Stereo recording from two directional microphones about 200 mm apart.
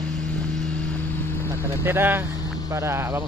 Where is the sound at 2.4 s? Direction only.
20° left (ahead or behind).